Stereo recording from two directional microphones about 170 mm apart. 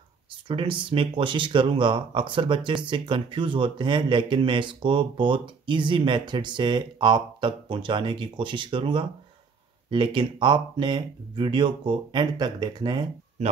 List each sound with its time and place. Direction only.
0.5 s speech: 30° right (ahead or behind)